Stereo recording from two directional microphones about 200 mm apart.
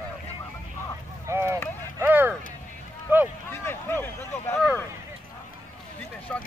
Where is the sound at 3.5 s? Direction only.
10° left (ahead or behind).